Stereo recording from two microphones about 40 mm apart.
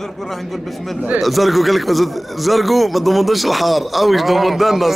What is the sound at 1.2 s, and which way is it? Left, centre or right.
Speech, centre.